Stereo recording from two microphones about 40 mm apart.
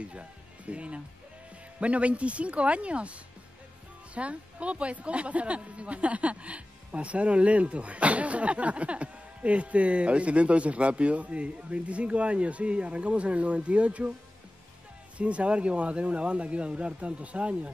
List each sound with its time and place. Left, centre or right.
0.0 s speech: right
15.1 s speech: right